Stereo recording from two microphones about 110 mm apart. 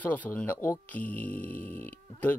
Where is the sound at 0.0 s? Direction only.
15° left (ahead or behind).